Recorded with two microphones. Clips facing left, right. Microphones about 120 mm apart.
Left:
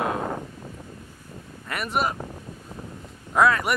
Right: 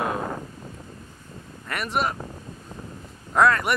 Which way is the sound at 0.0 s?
20° left (ahead or behind).